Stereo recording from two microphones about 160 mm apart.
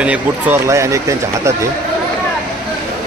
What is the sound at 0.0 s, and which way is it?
Speech, 10° right (ahead or behind).